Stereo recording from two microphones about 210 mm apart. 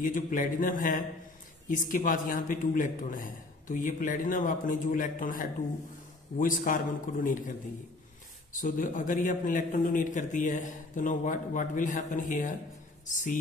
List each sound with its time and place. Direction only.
0.0 s a man's voice: 40° left (ahead or behind)
8.5 s a man's voice: 40° left (ahead or behind)